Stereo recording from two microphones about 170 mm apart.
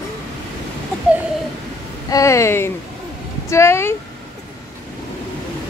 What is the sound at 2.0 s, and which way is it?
Speech, 20° left (ahead or behind).